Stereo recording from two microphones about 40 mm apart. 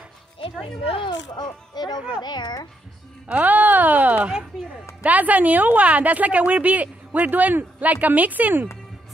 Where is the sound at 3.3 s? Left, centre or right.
Right.